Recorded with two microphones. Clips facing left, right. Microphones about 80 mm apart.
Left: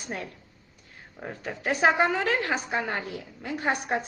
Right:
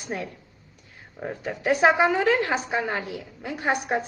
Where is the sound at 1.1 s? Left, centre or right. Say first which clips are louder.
Right 4 dB; centre.